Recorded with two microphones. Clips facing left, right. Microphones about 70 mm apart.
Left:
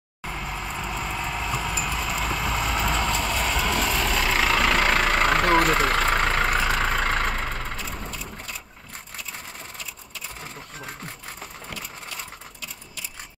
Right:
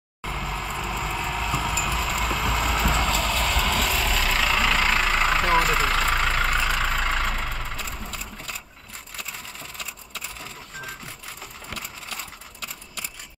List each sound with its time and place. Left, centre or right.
0.3 s vehicle: centre
4.8 s vehicle: left
5.9 s vehicle: left
7.4 s vehicle: left
7.8 s sewing machine: centre